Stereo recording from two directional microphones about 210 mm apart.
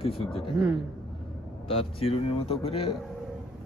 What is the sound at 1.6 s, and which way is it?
Speech, 25° left (ahead or behind).